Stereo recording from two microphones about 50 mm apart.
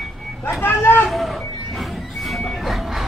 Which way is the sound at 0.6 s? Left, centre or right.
Left.